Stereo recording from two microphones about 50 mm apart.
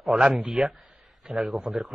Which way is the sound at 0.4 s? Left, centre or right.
Centre.